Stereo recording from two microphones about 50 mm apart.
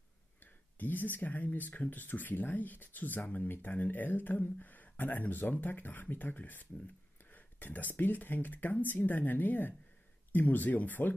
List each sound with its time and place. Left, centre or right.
0.4 s speech: left